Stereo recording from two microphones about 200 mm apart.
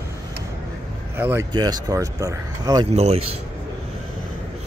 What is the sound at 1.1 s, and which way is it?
Speech, 10° right (ahead or behind).